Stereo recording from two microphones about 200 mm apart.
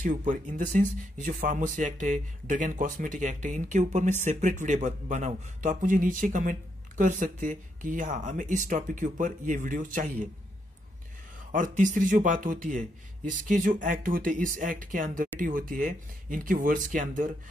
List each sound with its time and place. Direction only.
0.0 s speech: 40° right (ahead or behind)
11.5 s speech: 40° right (ahead or behind)